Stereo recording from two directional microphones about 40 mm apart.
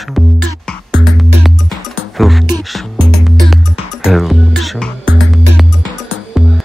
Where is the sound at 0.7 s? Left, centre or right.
Centre.